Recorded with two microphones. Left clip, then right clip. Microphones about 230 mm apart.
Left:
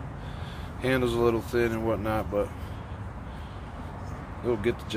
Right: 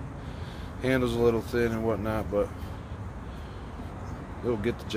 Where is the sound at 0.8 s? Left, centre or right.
Right.